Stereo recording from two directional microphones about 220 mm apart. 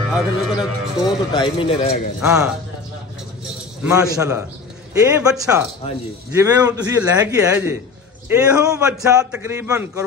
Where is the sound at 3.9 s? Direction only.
15° right (ahead or behind).